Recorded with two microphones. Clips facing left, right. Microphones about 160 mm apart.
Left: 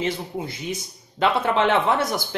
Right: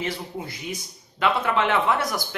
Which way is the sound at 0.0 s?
25° left (ahead or behind).